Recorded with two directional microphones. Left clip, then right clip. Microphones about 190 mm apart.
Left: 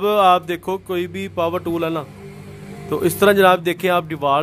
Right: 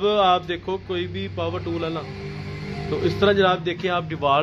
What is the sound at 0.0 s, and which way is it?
Speech, 40° left (ahead or behind).